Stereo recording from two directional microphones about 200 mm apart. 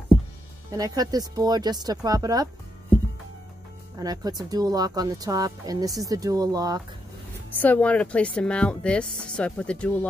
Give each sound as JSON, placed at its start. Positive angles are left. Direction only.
{"t": 0.7, "sound": "speech", "side_deg": -20}
{"t": 4.0, "sound": "speech", "side_deg": -20}
{"t": 7.6, "sound": "speech", "side_deg": 5}